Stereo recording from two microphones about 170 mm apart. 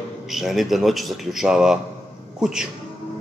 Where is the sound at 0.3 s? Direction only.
Centre (ahead or behind).